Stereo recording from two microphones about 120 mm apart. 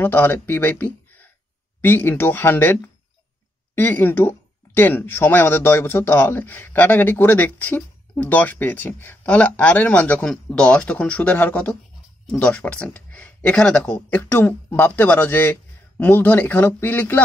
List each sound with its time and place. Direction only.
0.0 s speech: 15° left (ahead or behind)